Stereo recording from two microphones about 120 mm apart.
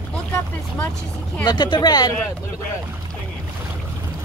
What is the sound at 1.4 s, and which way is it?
Speech, 40° left (ahead or behind).